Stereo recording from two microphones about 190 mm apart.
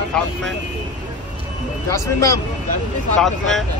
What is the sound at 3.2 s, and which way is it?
Speech, centre (ahead or behind).